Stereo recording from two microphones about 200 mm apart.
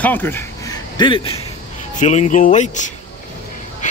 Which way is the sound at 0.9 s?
25° left (ahead or behind).